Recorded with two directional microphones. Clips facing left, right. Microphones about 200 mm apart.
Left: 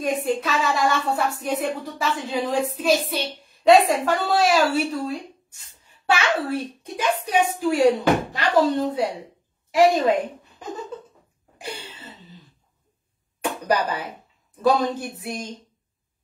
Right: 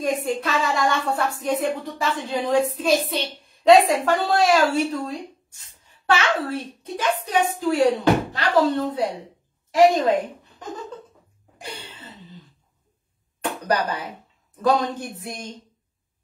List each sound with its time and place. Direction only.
0.0 s a woman's voice: centre (ahead or behind)
13.4 s a sound: 10° left (ahead or behind)
14.6 s a child's voice: 10° left (ahead or behind)